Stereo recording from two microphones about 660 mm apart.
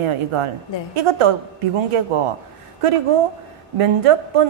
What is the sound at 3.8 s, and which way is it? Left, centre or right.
Speech, right.